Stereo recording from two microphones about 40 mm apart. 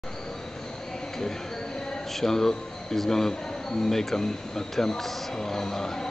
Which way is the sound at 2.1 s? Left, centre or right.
Centre.